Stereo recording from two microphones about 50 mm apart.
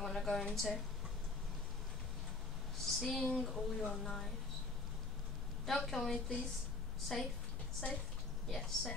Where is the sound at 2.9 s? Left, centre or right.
Centre.